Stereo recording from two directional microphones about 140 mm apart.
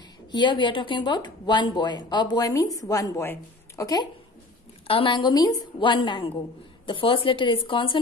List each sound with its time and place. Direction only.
0.3 s speech: 35° left (ahead or behind)
4.8 s speech: 40° left (ahead or behind)